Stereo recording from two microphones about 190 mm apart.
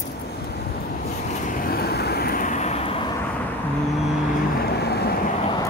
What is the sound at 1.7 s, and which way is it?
Vehicle, 55° left (ahead or behind).